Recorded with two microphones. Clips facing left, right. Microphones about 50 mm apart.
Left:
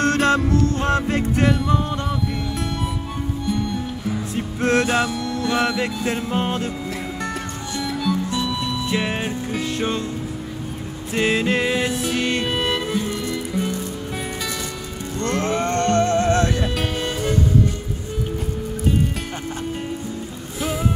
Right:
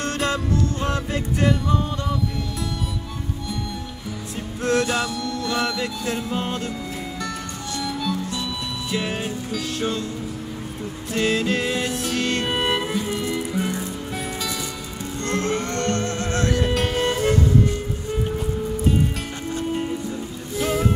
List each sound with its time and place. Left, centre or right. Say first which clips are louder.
0.0 s music: left 6 dB; left
4.6 s music: left 3 dB; left
7.8 s music: left 3 dB; centre
8.9 s music: even; left
11.1 s music: left 2 dB; left
11.7 s music: left 3 dB; centre
12.4 s music: even; centre
15.2 s moo: left 3 dB; left
17.0 s music: right 4 dB; right